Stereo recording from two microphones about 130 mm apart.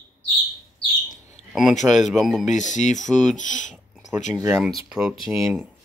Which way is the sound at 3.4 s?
75° left (ahead or behind).